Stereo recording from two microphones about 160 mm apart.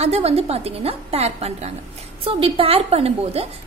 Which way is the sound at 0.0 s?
40° right (ahead or behind).